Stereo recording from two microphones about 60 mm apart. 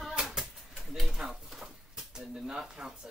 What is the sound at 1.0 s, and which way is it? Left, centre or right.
Speech, centre.